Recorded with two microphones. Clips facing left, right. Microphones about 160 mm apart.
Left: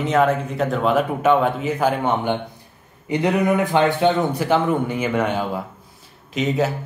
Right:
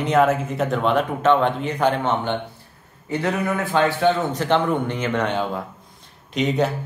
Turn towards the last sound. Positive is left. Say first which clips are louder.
# even
turn(degrees=0)  # may be behind; listen again after turning